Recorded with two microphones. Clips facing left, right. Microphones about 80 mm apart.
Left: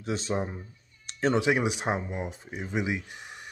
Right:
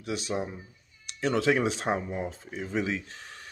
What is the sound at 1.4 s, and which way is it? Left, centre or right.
Speech, centre.